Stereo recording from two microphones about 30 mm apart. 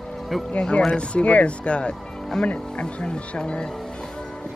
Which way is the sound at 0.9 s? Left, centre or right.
Left.